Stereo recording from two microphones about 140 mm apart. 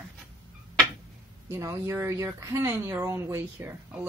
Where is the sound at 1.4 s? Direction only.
20° right (ahead or behind).